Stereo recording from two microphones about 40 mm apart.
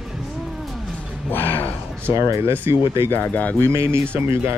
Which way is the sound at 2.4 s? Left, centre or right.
Right.